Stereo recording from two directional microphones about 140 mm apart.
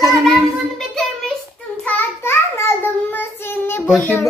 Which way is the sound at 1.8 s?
15° left (ahead or behind).